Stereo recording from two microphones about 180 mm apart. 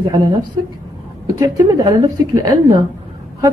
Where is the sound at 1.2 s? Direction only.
20° right (ahead or behind).